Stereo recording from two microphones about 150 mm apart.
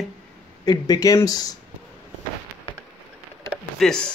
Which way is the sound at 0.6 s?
25° left (ahead or behind).